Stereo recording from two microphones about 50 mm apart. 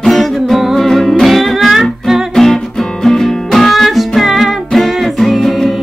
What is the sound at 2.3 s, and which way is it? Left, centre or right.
Music, centre.